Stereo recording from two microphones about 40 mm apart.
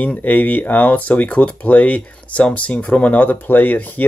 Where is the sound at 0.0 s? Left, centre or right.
Left.